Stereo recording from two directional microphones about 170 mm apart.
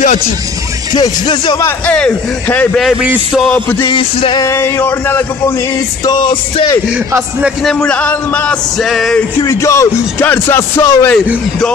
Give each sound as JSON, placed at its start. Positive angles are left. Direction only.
{"t": 0.9, "sound": "music", "side_deg": 25}
{"t": 1.6, "sound": "speech", "side_deg": 5}
{"t": 3.8, "sound": "music", "side_deg": 30}
{"t": 4.5, "sound": "speech", "side_deg": 15}
{"t": 6.0, "sound": "music", "side_deg": 25}
{"t": 7.4, "sound": "music", "side_deg": 5}
{"t": 9.4, "sound": "speech", "side_deg": 15}